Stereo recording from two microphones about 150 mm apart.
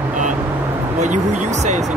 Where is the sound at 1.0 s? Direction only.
55° right (ahead or behind).